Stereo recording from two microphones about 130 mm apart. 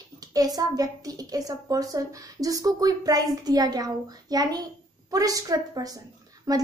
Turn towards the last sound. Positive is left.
turn(degrees=-30)  # may be behind; listen again after turning